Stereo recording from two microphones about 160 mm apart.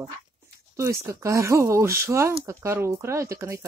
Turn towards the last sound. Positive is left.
turn(degrees=-20)  # may be behind; listen again after turning